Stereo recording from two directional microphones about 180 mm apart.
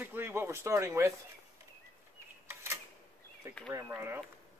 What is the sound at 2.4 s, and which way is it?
Camera, 15° right (ahead or behind).